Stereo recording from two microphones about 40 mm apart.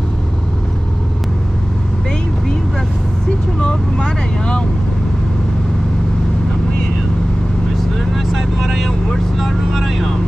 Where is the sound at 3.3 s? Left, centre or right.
Left.